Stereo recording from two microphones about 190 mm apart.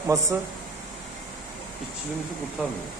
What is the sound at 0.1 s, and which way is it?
Speech, 15° right (ahead or behind).